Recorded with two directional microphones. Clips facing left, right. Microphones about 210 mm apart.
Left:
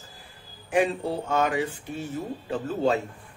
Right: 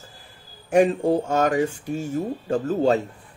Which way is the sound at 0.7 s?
45° right (ahead or behind).